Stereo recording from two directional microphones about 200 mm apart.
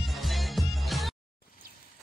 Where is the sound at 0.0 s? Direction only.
Centre (ahead or behind).